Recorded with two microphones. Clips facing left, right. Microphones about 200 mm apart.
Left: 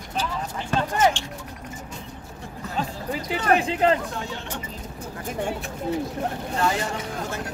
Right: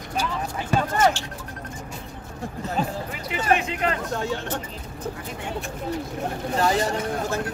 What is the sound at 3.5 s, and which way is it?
Speech, 30° left (ahead or behind).